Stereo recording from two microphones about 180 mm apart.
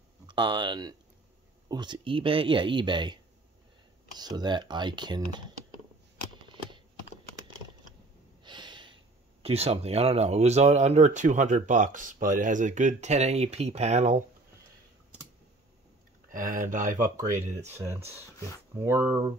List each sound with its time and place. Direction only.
0.3 s speech: 25° right (ahead or behind)
4.2 s speech: 25° right (ahead or behind)
8.5 s snort: 25° right (ahead or behind)
9.4 s speech: 35° right (ahead or behind)
16.3 s speech: 50° right (ahead or behind)
17.7 s speech: 15° right (ahead or behind)